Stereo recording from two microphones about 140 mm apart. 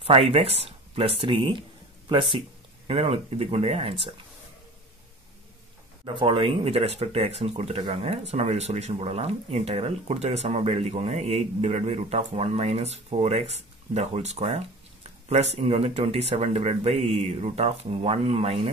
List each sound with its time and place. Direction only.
0.0 s speech: 45° right (ahead or behind)
2.9 s speech: 45° right (ahead or behind)
6.0 s speech: 35° right (ahead or behind)